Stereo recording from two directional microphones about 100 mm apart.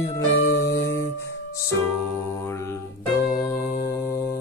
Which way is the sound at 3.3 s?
30° left (ahead or behind).